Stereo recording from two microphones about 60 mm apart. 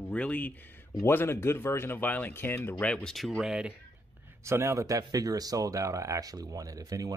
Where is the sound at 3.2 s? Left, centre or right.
Centre.